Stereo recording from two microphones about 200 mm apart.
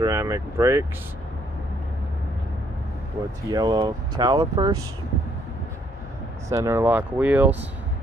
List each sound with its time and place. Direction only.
0.0 s speech: 15° right (ahead or behind)
3.4 s speech: 20° right (ahead or behind)
6.5 s speech: 15° right (ahead or behind)